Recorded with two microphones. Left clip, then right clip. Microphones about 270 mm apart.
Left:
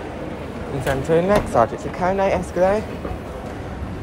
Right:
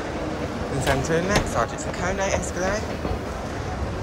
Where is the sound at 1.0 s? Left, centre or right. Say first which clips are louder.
Left 5 dB; centre.